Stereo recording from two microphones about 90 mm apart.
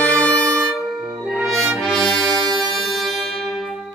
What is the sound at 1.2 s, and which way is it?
Brass instrument, 5° right (ahead or behind).